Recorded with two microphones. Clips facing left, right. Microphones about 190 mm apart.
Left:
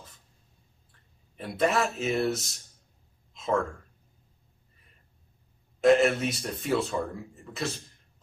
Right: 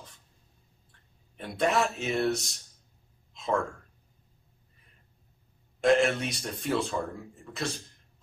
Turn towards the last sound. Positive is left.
turn(degrees=0)  # may be behind; listen again after turning